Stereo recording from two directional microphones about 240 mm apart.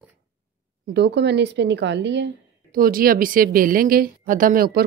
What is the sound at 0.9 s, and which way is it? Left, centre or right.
Speech, right.